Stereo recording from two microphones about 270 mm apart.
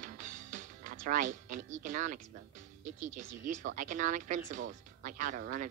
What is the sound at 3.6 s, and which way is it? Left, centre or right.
Speech, right.